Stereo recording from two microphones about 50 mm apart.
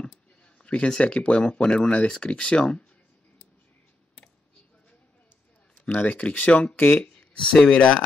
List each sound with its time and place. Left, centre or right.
0.6 s speech: left
1.4 s speech: centre
5.9 s speech: left